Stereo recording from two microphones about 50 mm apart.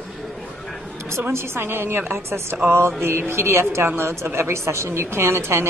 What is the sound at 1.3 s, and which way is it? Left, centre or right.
A woman's voice, right.